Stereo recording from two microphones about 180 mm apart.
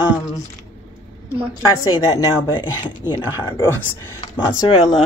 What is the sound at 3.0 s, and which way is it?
Speech, 25° left (ahead or behind).